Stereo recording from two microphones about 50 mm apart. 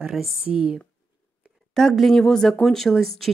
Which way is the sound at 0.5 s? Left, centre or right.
Centre.